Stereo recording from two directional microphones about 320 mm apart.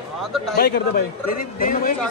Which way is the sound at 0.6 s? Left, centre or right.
Left.